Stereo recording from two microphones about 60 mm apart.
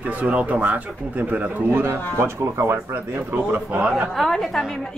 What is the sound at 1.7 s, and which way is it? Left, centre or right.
Speech, right.